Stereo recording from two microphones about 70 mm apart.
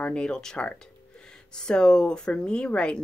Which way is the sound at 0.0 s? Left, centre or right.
Centre.